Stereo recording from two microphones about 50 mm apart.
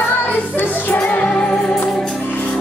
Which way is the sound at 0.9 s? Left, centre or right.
Left.